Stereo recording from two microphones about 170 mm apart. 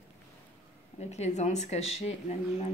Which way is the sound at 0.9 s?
40° left (ahead or behind).